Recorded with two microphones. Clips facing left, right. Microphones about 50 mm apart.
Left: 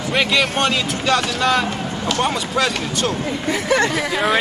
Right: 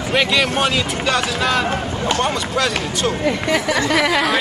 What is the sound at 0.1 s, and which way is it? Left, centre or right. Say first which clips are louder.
A man's voice: right 1 dB; centre.